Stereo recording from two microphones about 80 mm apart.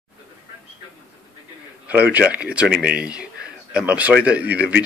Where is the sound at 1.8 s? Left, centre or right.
Right.